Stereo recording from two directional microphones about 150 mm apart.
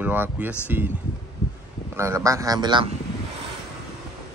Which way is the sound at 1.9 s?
20° right (ahead or behind).